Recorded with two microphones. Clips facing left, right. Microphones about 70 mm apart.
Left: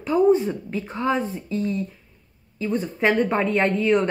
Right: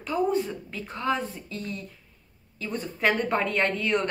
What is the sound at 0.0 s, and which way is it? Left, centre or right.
Speech, centre.